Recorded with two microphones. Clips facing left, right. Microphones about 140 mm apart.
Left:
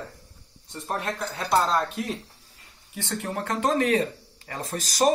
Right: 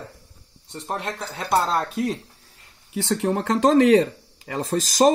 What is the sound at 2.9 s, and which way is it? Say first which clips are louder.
Speech: right 8 dB; 90° right.